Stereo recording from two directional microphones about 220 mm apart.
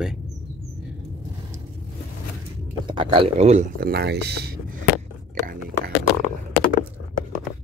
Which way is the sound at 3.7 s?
45° right (ahead or behind).